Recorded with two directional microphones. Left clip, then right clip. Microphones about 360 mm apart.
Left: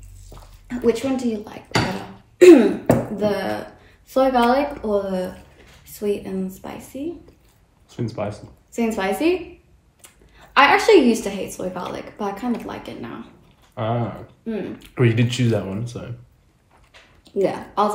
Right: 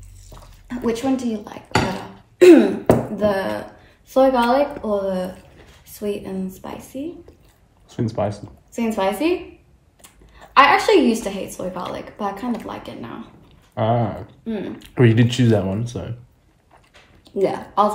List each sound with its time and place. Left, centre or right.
0.3 s speech: centre
2.3 s a sound: centre
3.2 s a woman's voice: centre
7.9 s speech: right
8.7 s a woman's voice: centre
10.3 s a woman's voice: centre
13.7 s speech: right
14.4 s speech: centre
14.8 s speech: right
17.2 s speech: centre